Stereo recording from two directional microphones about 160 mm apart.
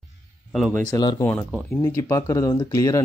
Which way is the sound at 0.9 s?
25° left (ahead or behind).